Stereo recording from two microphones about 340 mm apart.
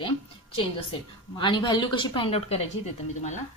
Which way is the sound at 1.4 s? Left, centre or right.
Centre.